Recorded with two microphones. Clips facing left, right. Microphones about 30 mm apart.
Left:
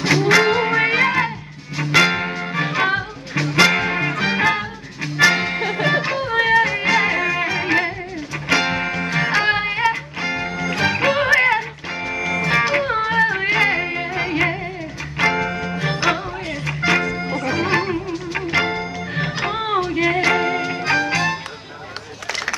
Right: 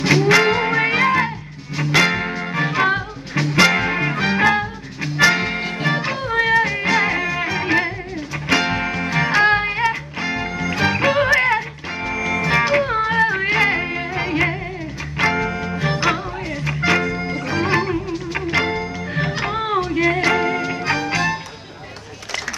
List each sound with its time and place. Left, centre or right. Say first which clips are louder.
0.0 s music: right 1 dB; centre
5.6 s music: left 3 dB; left
6.1 s music: even; centre